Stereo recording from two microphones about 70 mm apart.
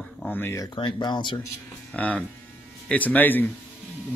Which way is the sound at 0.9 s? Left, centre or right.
Left.